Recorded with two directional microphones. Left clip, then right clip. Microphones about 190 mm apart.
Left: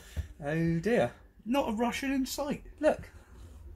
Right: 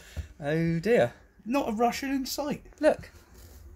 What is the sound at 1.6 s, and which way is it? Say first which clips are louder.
Speech: right 4 dB; 40° right (ahead or behind).